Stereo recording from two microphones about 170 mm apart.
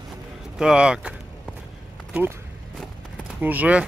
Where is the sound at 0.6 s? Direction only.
5° right (ahead or behind).